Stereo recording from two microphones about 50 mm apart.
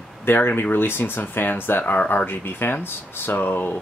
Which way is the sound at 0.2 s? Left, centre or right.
Left.